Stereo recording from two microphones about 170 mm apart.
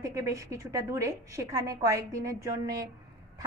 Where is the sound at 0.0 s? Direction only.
20° right (ahead or behind).